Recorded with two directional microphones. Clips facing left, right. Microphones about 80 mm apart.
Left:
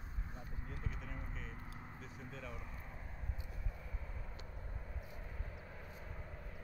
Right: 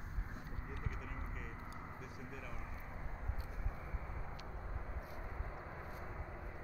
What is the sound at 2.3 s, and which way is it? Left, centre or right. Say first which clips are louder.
Speech: left 3 dB; centre.